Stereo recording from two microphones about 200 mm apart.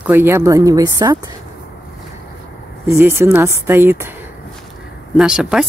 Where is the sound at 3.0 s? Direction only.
10° right (ahead or behind).